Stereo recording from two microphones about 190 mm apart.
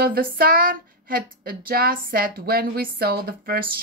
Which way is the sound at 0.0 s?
50° right (ahead or behind).